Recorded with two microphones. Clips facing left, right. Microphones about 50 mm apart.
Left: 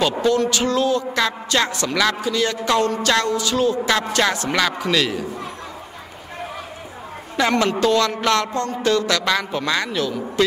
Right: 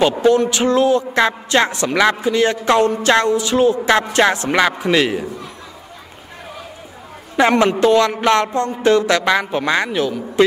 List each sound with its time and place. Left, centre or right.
0.2 s speech: right
7.3 s speech: right